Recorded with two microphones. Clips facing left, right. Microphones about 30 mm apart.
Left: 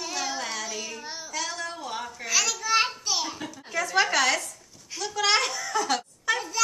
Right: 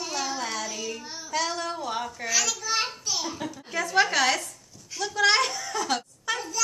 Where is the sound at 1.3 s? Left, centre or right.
Right.